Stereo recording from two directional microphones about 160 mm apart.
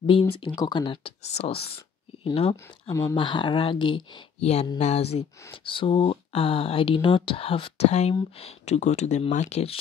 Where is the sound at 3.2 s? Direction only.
30° left (ahead or behind).